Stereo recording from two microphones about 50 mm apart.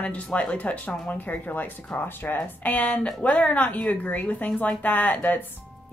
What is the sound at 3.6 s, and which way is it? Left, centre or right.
Speech, left.